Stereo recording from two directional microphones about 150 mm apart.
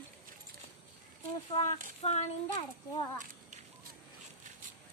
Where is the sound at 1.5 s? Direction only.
45° left (ahead or behind).